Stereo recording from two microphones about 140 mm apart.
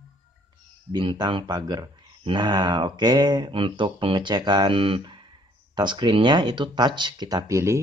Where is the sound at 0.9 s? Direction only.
30° right (ahead or behind).